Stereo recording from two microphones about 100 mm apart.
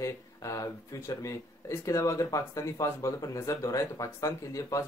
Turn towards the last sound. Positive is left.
turn(degrees=35)  # may be behind; listen again after turning